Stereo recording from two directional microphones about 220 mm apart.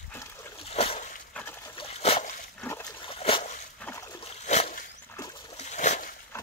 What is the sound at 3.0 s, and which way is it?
Trickle, 25° left (ahead or behind).